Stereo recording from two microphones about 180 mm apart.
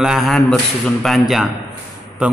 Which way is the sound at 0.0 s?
Centre (ahead or behind).